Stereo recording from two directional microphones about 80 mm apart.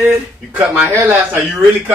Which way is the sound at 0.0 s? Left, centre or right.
Centre.